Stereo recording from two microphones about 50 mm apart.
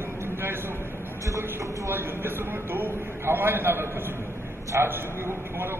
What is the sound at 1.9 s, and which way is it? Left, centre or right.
A man's voice, right.